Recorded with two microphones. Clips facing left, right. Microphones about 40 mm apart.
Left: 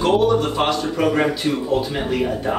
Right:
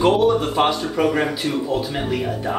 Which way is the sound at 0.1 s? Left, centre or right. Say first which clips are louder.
Even; centre.